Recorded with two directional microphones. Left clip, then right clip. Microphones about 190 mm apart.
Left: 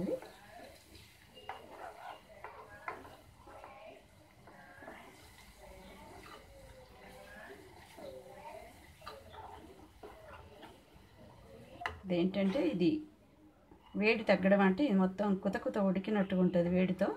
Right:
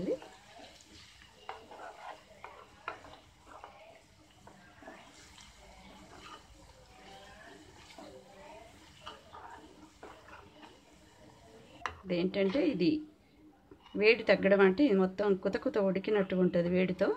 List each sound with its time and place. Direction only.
12.1 s speech: 30° right (ahead or behind)
13.9 s speech: 30° right (ahead or behind)